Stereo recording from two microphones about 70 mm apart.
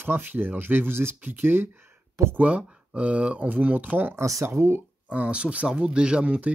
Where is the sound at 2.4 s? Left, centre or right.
Centre.